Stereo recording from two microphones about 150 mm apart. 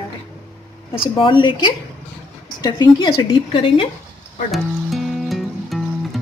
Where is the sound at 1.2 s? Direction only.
35° left (ahead or behind).